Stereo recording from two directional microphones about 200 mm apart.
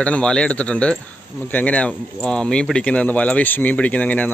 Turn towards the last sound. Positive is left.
turn(degrees=5)  # may be behind; listen again after turning